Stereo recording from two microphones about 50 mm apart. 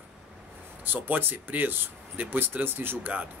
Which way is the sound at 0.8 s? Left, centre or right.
Right.